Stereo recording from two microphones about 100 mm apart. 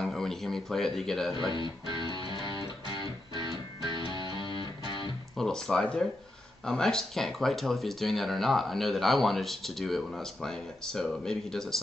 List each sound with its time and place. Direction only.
0.0 s speech: 5° left (ahead or behind)
1.3 s speech: 45° right (ahead or behind)
1.9 s music: 50° right (ahead or behind)
4.4 s music: 55° left (ahead or behind)
5.4 s speech: 5° left (ahead or behind)